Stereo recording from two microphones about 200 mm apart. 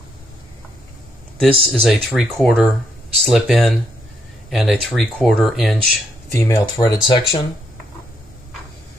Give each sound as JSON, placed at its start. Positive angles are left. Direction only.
{"t": 1.4, "sound": "speech", "side_deg": 0}
{"t": 6.3, "sound": "speech", "side_deg": 15}